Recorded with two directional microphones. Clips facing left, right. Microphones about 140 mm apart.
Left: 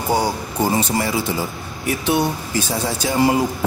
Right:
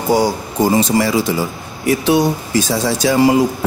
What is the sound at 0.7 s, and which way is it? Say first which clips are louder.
Speech: right 6 dB; 90° right.